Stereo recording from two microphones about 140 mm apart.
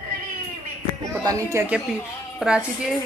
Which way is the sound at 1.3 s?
20° right (ahead or behind).